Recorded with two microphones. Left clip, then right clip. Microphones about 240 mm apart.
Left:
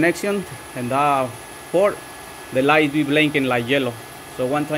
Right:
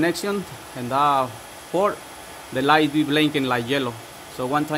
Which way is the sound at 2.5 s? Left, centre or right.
Centre.